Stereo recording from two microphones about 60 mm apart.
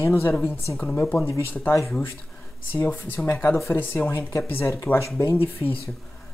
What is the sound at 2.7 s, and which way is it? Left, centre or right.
Speech, left.